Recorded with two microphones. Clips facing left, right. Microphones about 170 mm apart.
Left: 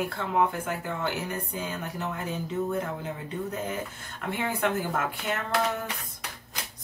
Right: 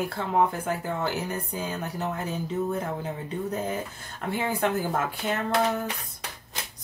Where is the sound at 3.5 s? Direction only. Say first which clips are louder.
Right 3 dB; 35° right (ahead or behind).